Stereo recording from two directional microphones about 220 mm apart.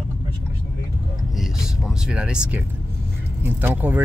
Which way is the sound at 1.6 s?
5° right (ahead or behind).